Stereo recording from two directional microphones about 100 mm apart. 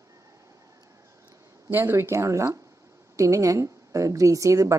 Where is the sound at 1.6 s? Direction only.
25° right (ahead or behind).